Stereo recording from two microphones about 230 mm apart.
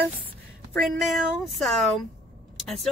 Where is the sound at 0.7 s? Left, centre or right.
Centre.